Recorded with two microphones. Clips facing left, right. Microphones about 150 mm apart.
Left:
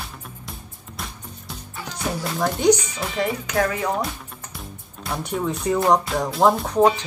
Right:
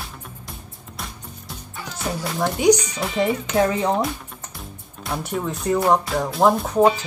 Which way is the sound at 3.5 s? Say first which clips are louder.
Right 3 dB; 25° right (ahead or behind).